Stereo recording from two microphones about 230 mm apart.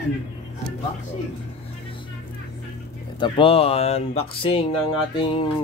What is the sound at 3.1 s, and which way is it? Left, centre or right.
Speech, left.